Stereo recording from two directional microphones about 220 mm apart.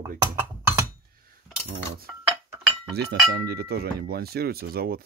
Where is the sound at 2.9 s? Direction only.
45° right (ahead or behind).